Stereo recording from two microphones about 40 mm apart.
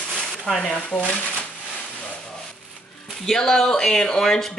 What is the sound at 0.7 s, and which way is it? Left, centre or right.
Speech, left.